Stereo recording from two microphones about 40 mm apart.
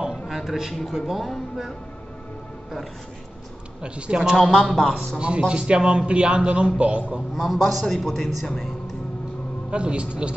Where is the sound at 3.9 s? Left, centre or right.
Right.